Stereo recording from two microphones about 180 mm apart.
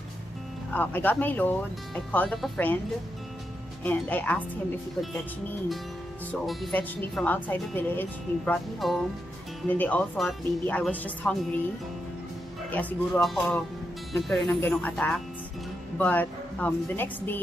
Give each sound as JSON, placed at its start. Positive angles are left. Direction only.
{"t": 0.7, "sound": "speech", "side_deg": 10}
{"t": 3.8, "sound": "speech", "side_deg": 10}
{"t": 6.4, "sound": "speech", "side_deg": 0}
{"t": 8.7, "sound": "speech", "side_deg": 0}
{"t": 12.7, "sound": "speech", "side_deg": 5}